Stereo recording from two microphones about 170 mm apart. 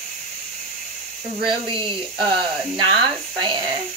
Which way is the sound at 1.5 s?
30° right (ahead or behind).